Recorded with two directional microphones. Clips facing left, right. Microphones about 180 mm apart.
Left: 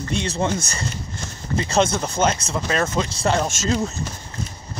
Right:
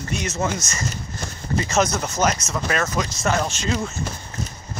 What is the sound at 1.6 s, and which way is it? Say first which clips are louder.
Speech: left 2 dB; 25° left (ahead or behind).